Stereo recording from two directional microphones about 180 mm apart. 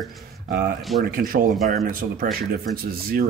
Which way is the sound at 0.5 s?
50° right (ahead or behind).